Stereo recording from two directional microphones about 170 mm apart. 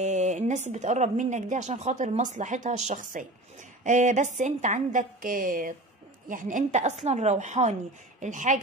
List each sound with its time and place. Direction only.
0.0 s speech: 45° right (ahead or behind)